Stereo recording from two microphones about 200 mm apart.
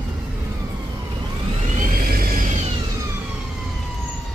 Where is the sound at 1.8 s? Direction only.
45° right (ahead or behind).